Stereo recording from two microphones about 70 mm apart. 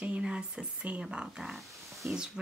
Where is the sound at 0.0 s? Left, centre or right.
Centre.